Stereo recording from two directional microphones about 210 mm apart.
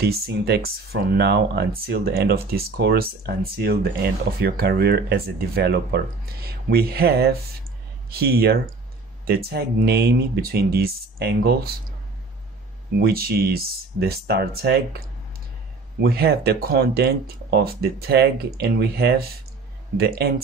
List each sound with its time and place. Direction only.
0.0 s speech: 50° right (ahead or behind)
13.0 s speech: 45° right (ahead or behind)